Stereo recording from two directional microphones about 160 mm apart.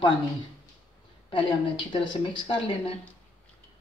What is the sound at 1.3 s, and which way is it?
Speech, 30° left (ahead or behind).